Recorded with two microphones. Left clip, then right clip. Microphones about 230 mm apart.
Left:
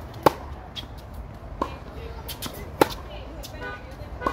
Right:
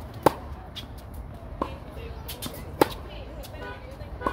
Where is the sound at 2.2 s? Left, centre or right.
Centre.